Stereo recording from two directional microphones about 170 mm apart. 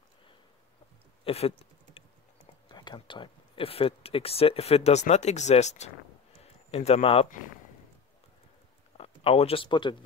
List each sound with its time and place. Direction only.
1.2 s speech: 35° left (ahead or behind)
2.7 s speech: 25° left (ahead or behind)
8.9 s speech: 35° left (ahead or behind)